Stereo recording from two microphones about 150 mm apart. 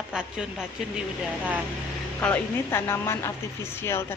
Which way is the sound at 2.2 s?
10° left (ahead or behind).